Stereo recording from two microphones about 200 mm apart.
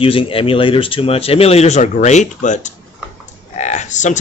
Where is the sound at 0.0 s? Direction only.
25° left (ahead or behind).